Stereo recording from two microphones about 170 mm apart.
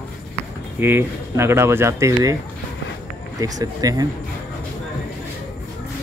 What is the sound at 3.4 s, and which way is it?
Speech, 20° right (ahead or behind).